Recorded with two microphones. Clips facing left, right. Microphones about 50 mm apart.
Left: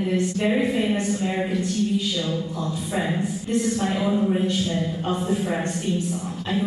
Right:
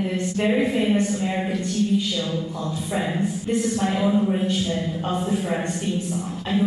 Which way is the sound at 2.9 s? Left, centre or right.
Centre.